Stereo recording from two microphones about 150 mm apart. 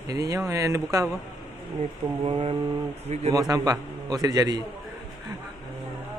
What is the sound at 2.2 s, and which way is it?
Mantra, 35° right (ahead or behind).